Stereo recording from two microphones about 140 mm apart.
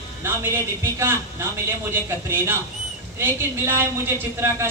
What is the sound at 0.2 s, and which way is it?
Speech, 15° right (ahead or behind).